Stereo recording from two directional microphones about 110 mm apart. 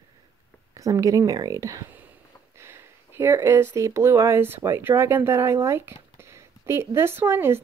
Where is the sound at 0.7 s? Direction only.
30° right (ahead or behind).